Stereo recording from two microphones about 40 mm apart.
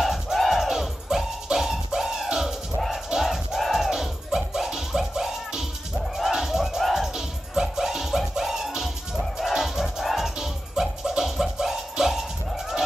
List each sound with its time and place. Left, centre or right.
0.0 s music: centre